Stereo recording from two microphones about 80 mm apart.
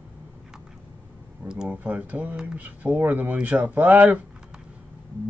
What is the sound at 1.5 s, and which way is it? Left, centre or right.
Speech, centre.